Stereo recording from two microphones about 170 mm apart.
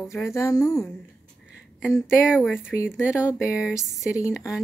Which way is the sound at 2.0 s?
5° right (ahead or behind).